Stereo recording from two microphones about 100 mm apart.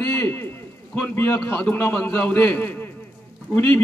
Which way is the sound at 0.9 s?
20° left (ahead or behind).